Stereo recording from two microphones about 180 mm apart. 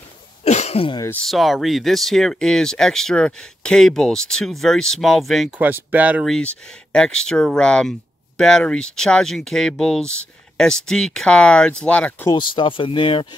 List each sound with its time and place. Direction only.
0.4 s cough: 35° left (ahead or behind)
1.0 s speech: 5° left (ahead or behind)
5.6 s speech: 10° right (ahead or behind)
6.2 s speech: 5° left (ahead or behind)
12.3 s speech: 25° left (ahead or behind)